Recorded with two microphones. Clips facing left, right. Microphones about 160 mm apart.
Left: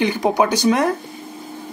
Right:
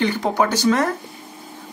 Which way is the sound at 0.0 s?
15° left (ahead or behind).